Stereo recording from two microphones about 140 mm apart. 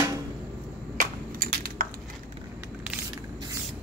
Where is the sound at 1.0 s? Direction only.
85° right.